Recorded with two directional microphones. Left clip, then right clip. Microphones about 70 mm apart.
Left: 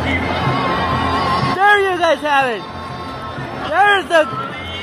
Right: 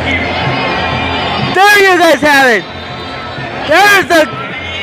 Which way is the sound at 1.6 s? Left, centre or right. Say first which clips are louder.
Right 8 dB; right.